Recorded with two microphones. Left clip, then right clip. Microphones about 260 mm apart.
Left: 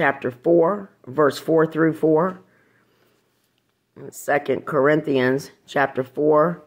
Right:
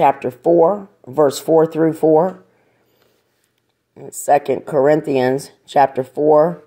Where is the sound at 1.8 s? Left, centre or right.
Right.